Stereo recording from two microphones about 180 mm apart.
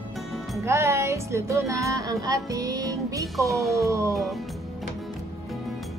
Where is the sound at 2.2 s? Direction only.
20° right (ahead or behind).